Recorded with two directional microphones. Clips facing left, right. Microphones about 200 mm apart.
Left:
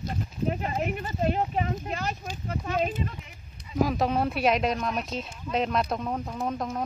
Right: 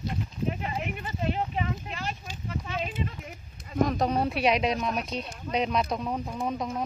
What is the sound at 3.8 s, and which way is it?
A woman's voice, 5° left (ahead or behind).